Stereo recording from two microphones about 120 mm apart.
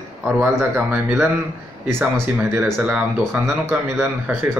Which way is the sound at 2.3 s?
10° right (ahead or behind).